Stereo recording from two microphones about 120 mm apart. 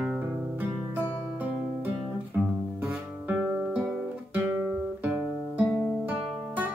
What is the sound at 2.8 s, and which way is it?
Guitar, 15° right (ahead or behind).